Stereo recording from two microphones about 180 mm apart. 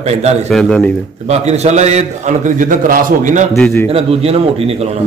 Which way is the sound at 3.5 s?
15° left (ahead or behind).